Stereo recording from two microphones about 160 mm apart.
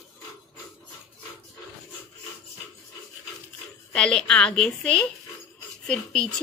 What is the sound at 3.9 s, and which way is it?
A woman's voice, 5° left (ahead or behind).